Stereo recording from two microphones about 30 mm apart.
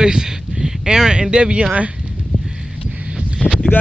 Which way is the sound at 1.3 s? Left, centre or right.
Right.